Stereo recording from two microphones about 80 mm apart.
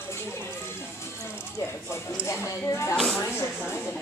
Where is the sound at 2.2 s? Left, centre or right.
Left.